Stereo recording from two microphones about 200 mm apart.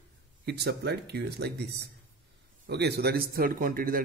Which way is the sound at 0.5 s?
55° right (ahead or behind).